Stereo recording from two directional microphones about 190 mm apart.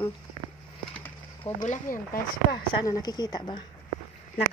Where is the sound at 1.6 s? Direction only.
40° left (ahead or behind).